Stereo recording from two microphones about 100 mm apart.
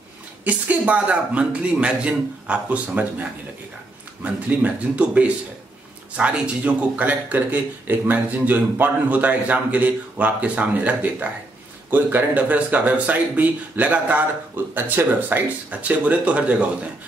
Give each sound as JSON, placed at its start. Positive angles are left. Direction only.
{"t": 0.5, "sound": "speech", "side_deg": -15}